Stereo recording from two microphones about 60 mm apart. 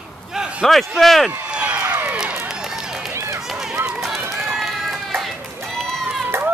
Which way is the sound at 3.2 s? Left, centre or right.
Right.